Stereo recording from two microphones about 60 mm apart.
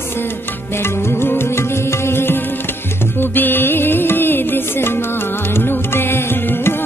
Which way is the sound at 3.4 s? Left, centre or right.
Left.